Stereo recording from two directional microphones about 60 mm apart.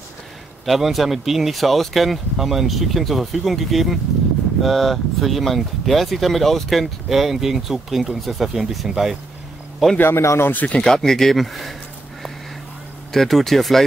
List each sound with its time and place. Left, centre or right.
0.7 s speech: centre
9.9 s a man's voice: left
10.4 s speech: left
10.8 s speech: centre
13.1 s speech: centre